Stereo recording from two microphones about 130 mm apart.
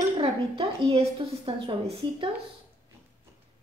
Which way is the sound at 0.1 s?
45° right (ahead or behind).